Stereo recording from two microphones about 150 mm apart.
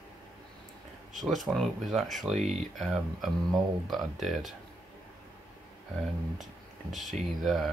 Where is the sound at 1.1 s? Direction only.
Centre (ahead or behind).